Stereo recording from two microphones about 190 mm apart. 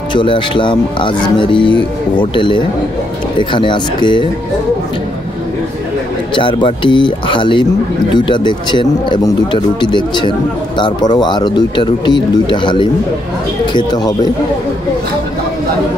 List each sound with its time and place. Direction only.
0.1 s speech: 25° left (ahead or behind)
6.3 s speech: 25° left (ahead or behind)